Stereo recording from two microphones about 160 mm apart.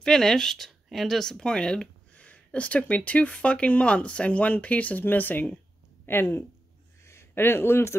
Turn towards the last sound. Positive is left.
turn(degrees=15)  # may be behind; listen again after turning